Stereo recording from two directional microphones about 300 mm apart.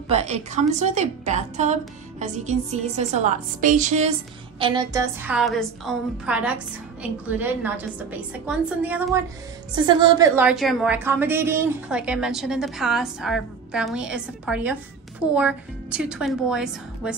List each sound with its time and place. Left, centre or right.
0.1 s a woman's voice: right; by 17.1 s centre